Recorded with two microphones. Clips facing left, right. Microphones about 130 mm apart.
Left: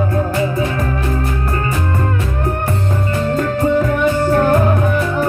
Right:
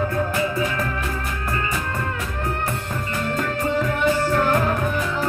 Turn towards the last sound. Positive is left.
turn(degrees=50)  # may be behind; listen again after turning